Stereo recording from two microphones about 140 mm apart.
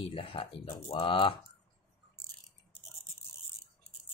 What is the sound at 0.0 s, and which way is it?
Speech, 40° left (ahead or behind).